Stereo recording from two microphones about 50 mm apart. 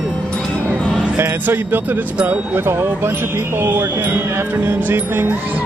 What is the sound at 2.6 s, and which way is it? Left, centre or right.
Speech, right.